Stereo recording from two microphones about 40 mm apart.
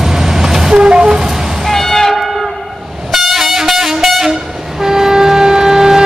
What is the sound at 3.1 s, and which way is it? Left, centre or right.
Train, centre.